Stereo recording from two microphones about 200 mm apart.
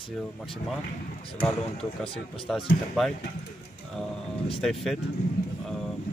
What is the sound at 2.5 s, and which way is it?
Speech, centre (ahead or behind).